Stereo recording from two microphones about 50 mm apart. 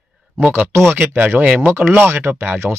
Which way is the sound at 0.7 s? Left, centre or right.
Right.